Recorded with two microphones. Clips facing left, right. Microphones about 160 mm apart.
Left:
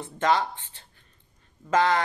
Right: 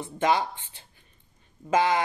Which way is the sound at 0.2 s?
10° right (ahead or behind).